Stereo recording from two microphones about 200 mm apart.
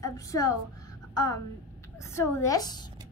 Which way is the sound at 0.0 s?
15° left (ahead or behind).